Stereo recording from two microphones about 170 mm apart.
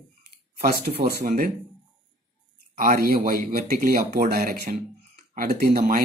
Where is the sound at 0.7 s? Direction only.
65° right (ahead or behind).